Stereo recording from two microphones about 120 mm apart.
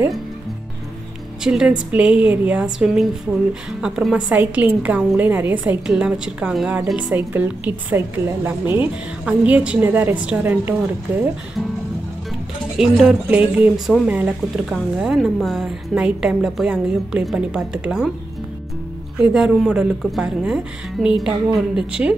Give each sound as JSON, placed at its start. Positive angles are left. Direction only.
{"t": 1.4, "sound": "a woman's voice", "side_deg": -5}
{"t": 12.7, "sound": "a woman's voice", "side_deg": -5}
{"t": 13.7, "sound": "a woman's voice", "side_deg": -5}
{"t": 19.1, "sound": "a woman's voice", "side_deg": -5}